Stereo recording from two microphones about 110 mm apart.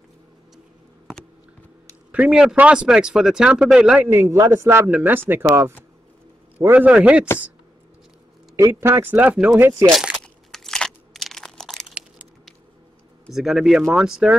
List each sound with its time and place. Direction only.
2.1 s speech: 10° right (ahead or behind)
4.1 s speech: 25° right (ahead or behind); by 7.2 s 10° right (ahead or behind)
8.5 s speech: 30° right (ahead or behind); by 9.6 s 10° right (ahead or behind)
9.6 s speech: 25° right (ahead or behind)
9.8 s a sound: 5° right (ahead or behind)
10.2 s crunch: 5° left (ahead or behind)
13.3 s speech: 5° right (ahead or behind)